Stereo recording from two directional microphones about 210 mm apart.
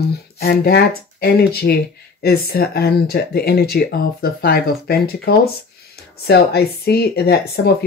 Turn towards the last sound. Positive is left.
turn(degrees=50)  # may be behind; listen again after turning